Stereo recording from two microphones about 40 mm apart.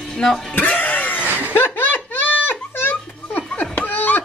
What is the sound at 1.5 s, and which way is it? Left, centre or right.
Laughter, left.